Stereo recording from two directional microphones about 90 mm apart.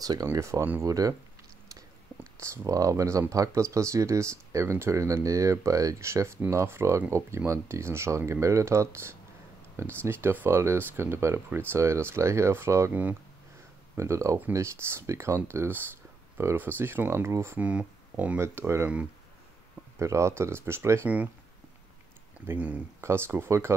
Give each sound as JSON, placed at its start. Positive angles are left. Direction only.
{"t": 0.0, "sound": "speech", "side_deg": -45}
{"t": 2.4, "sound": "speech", "side_deg": -35}
{"t": 13.9, "sound": "speech", "side_deg": -35}
{"t": 17.6, "sound": "speech", "side_deg": -15}
{"t": 18.4, "sound": "speech", "side_deg": -30}
{"t": 20.0, "sound": "speech", "side_deg": -35}
{"t": 22.5, "sound": "speech", "side_deg": -15}
{"t": 22.9, "sound": "speech", "side_deg": -30}